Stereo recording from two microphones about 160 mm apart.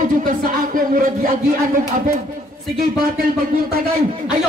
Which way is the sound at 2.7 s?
70° right (ahead or behind).